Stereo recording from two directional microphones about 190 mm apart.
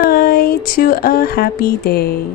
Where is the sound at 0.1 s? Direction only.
50° left (ahead or behind).